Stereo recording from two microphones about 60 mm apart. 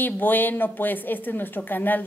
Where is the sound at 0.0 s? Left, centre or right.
Left.